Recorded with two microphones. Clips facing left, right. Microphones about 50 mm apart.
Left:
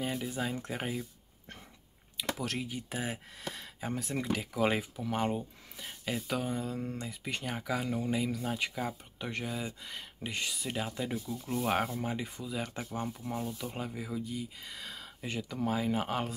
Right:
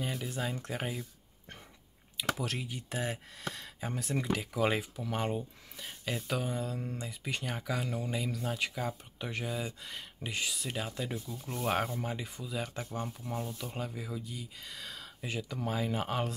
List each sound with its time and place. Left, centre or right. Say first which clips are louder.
0.0 s speech: left 2 dB; centre
2.3 s speech: left 1 dB; centre